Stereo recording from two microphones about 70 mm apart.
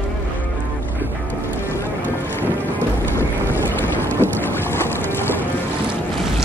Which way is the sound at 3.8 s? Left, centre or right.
Left.